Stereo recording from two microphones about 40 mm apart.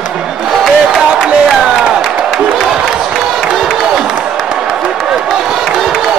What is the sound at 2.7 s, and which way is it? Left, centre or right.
Crowd, centre.